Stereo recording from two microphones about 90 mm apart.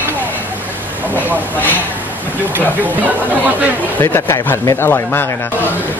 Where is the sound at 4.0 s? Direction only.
25° left (ahead or behind).